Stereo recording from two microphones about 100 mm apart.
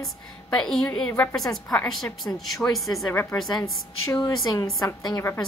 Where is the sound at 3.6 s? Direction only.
35° left (ahead or behind).